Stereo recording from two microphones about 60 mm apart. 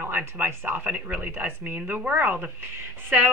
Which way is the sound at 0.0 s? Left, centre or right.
Right.